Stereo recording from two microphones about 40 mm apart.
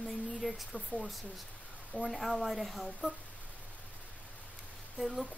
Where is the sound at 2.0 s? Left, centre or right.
Centre.